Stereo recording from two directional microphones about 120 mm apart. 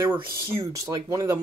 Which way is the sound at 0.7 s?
25° right (ahead or behind).